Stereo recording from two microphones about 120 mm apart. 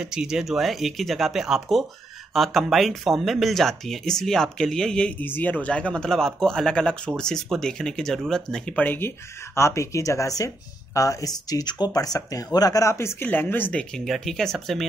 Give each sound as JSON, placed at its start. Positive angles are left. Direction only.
{"t": 0.0, "sound": "speech", "side_deg": -5}